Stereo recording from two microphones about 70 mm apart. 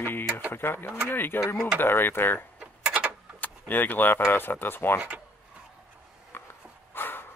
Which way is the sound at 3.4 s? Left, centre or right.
Left.